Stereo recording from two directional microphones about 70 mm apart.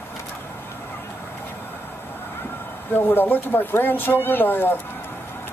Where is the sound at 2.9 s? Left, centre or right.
Left.